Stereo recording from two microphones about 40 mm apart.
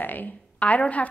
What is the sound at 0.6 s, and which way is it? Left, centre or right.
Speech, left.